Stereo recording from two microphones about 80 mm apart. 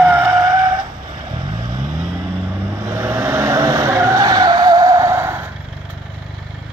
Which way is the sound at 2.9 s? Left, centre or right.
Right.